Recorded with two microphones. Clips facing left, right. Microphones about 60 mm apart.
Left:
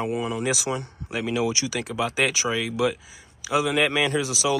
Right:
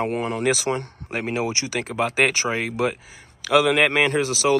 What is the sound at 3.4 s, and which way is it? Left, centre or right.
Speech, right.